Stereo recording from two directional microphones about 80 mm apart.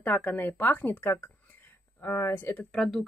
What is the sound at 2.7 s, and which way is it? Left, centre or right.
Speech, centre.